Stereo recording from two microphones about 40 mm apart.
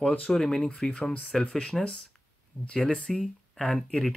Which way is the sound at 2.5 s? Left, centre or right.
Right.